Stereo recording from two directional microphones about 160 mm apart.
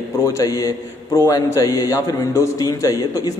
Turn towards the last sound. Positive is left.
turn(degrees=20)  # may be behind; listen again after turning